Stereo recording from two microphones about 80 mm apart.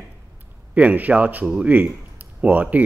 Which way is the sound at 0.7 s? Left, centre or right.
Centre.